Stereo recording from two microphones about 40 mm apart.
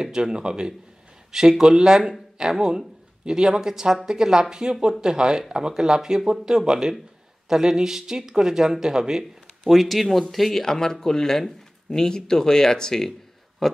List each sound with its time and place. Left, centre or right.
0.0 s speech: centre
9.7 s speech: centre
10.6 s speech: centre
13.6 s a sound: centre